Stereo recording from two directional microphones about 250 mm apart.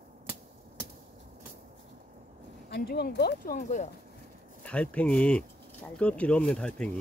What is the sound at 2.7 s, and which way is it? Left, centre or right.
Speech, left.